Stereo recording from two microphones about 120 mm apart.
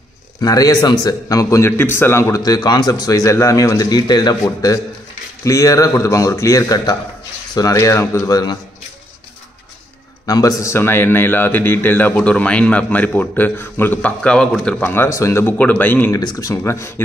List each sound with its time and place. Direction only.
0.4 s a man's voice: 30° left (ahead or behind)
10.2 s a man's voice: 30° left (ahead or behind); by 14.8 s 5° left (ahead or behind)
14.8 s a man's voice: 20° left (ahead or behind)
16.1 s a man's voice: 30° left (ahead or behind)